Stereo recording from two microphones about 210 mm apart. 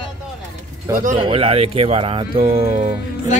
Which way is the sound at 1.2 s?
25° right (ahead or behind).